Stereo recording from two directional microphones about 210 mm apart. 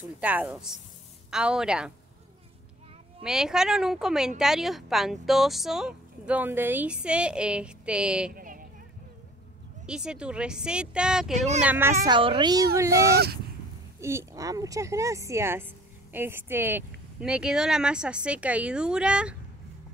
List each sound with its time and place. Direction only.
0.2 s speech: 5° right (ahead or behind)
3.2 s speech: 5° right (ahead or behind)
8.3 s a sound: 40° right (ahead or behind)
9.8 s speech: 5° right (ahead or behind)
11.3 s speech: 30° right (ahead or behind)
11.6 s speech: 10° right (ahead or behind)
13.1 s speech: 50° right (ahead or behind)
13.9 s speech: 15° right (ahead or behind)